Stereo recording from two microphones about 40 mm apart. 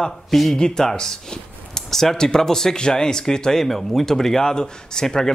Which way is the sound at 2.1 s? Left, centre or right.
Centre.